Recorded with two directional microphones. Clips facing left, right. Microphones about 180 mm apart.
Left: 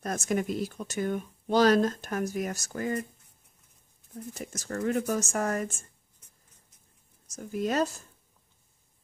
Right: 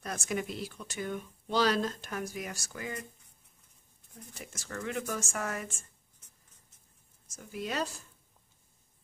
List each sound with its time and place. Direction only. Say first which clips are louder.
0.0 s speech: left 6 dB; 45° left (ahead or behind)
4.1 s speech: left 9 dB; 45° left (ahead or behind)
7.2 s speech: left 8 dB; 45° left (ahead or behind)